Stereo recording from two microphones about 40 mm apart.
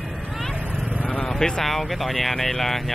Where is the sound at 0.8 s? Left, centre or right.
Right.